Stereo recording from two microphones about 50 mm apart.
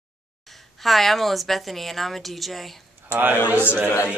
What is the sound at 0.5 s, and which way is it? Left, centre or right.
Speech, centre.